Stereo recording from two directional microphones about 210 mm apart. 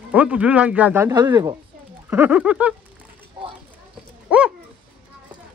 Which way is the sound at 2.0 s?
10° right (ahead or behind).